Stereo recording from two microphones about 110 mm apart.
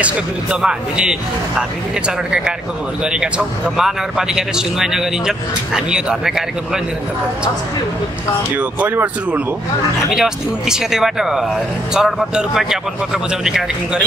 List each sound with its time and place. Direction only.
0.0 s a man's voice: 10° right (ahead or behind)
8.5 s a man's voice: 15° right (ahead or behind)